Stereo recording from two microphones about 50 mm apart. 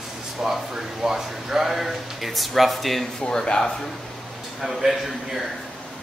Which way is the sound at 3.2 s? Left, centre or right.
Centre.